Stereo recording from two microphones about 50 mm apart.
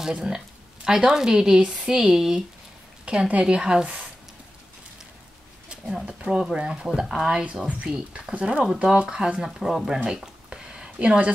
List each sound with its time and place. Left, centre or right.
0.0 s speech: centre
3.1 s speech: right
5.7 s speech: centre
7.0 s speech: centre
7.6 s speech: centre
9.6 s speech: centre
10.0 s a sound: centre